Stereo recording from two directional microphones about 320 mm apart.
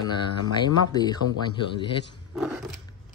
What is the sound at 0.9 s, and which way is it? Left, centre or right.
Speech, centre.